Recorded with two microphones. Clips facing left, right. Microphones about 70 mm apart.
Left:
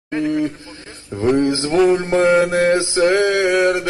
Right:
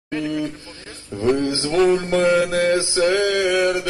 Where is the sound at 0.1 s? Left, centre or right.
Left.